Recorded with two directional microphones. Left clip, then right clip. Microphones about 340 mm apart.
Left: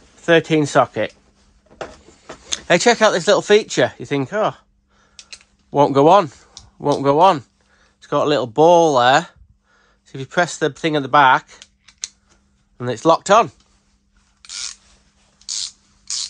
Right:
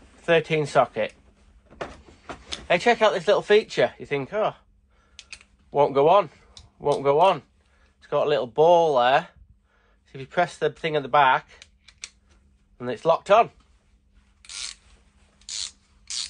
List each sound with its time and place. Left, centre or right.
0.2 s speech: left
2.5 s speech: left
5.8 s speech: left
12.7 s speech: left